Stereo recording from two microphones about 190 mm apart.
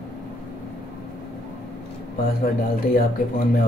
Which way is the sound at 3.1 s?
50° left (ahead or behind).